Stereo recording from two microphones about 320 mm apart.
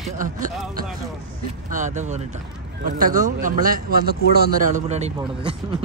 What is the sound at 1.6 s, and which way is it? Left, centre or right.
Speech, right.